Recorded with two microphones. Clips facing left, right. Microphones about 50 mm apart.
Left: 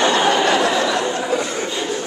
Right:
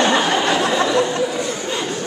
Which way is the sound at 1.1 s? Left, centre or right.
Left.